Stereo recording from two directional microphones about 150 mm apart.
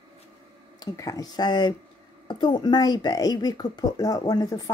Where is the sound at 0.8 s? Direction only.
25° left (ahead or behind).